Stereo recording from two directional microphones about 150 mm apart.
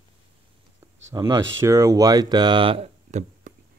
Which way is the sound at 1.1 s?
20° right (ahead or behind).